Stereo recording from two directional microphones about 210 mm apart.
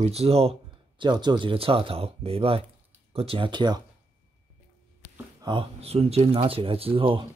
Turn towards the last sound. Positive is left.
turn(degrees=-25)  # may be behind; listen again after turning